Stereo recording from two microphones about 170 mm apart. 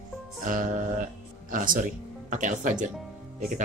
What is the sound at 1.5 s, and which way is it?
Speech, 55° right (ahead or behind).